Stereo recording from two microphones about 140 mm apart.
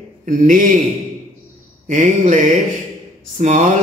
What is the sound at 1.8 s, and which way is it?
A man's voice, 60° right (ahead or behind).